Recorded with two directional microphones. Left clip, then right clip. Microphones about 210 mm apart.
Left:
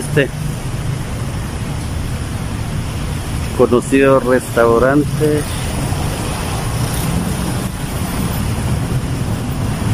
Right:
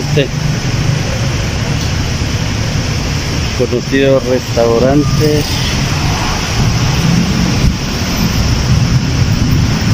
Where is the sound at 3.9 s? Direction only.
10° left (ahead or behind).